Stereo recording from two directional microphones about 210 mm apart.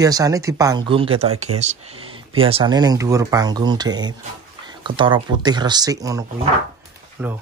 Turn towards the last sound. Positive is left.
turn(degrees=-10)  # may be behind; listen again after turning